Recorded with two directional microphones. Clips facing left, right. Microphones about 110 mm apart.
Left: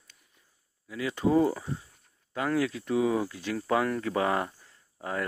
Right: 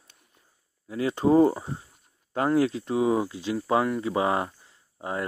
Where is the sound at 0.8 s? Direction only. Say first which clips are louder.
Right 5 dB; 35° right (ahead or behind).